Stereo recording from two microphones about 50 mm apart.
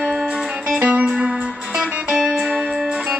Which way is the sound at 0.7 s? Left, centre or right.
Right.